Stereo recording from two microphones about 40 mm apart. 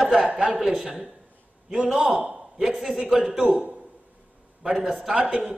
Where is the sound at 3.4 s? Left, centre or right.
Right.